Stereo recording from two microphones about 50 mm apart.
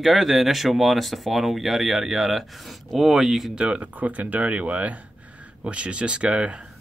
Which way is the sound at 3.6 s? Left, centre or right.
Right.